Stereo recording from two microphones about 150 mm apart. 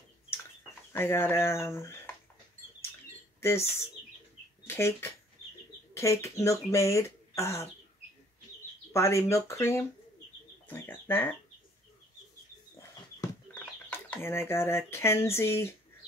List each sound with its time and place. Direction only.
0.9 s speech: 15° left (ahead or behind)
3.3 s speech: 15° left (ahead or behind)
8.9 s speech: 20° left (ahead or behind)
13.8 s speech: 15° left (ahead or behind)